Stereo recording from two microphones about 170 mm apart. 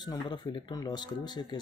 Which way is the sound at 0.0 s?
25° left (ahead or behind).